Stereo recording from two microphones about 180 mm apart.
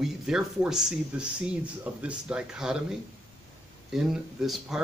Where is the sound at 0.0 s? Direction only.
Centre (ahead or behind).